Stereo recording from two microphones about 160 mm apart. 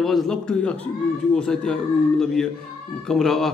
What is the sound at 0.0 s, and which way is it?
A man's voice, centre (ahead or behind).